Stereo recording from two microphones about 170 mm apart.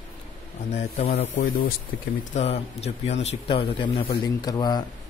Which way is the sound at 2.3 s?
40° left (ahead or behind).